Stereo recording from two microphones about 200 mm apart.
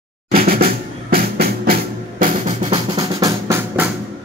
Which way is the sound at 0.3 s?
50° right (ahead or behind).